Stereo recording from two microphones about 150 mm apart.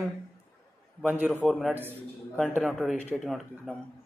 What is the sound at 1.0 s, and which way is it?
Speech, 10° right (ahead or behind).